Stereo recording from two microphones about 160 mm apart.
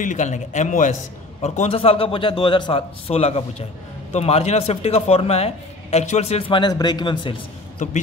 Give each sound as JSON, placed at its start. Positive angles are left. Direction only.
{"t": 0.0, "sound": "a man's voice", "side_deg": 50}